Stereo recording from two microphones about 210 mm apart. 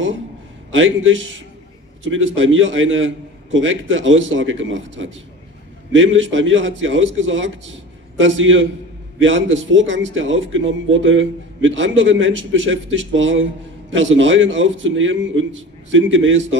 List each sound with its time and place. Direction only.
0.7 s speech: 65° right (ahead or behind)